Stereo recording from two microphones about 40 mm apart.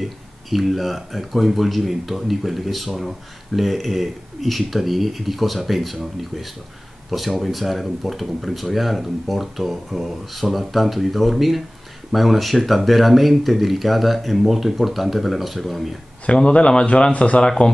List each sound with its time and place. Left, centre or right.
0.0 s speech: centre
16.3 s speech: left